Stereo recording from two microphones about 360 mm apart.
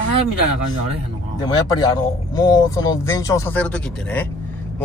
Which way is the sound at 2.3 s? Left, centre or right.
Centre.